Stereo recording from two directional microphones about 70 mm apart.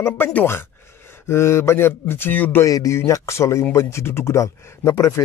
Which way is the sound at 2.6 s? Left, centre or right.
Left.